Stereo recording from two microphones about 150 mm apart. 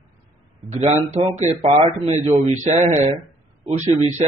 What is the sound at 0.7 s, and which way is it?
Mantra, 45° right (ahead or behind).